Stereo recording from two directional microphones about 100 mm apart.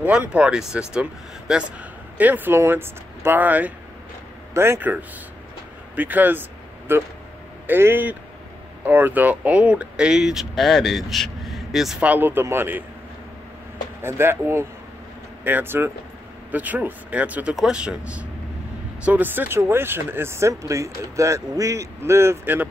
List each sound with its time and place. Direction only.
0.0 s speech: 15° right (ahead or behind)
5.9 s speech: 15° right (ahead or behind)
12.0 s speech: 15° right (ahead or behind)
14.0 s speech: 25° right (ahead or behind)